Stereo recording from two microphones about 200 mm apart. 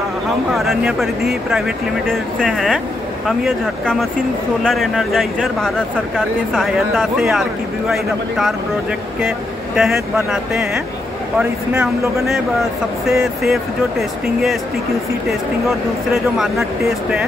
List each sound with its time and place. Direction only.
0.6 s speech: centre (ahead or behind)
9.8 s speech: centre (ahead or behind)